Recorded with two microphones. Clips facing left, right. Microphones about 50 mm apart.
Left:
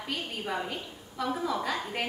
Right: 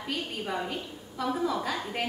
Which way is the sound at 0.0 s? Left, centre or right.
Centre.